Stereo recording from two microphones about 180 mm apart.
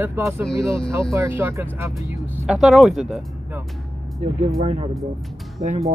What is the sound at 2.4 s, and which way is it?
Speech, centre (ahead or behind).